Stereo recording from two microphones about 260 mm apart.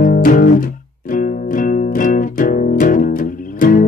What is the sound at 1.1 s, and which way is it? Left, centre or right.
Music, left.